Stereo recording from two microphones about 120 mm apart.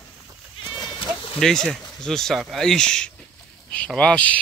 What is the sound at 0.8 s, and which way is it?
Bleat, 45° left (ahead or behind).